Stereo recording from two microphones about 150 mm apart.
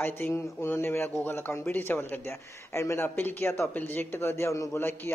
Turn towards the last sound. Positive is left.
turn(degrees=15)  # may be behind; listen again after turning